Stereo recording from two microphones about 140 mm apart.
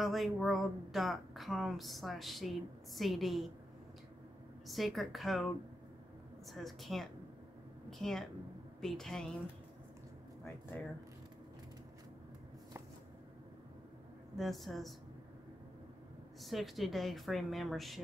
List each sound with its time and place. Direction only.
0.0 s a woman's voice: centre (ahead or behind)
4.6 s a woman's voice: centre (ahead or behind)
6.5 s a woman's voice: centre (ahead or behind)
14.3 s a woman's voice: centre (ahead or behind)
16.4 s a woman's voice: centre (ahead or behind)